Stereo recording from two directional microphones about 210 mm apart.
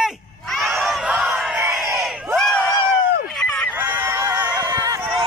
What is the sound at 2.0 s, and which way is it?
Crowd, centre (ahead or behind).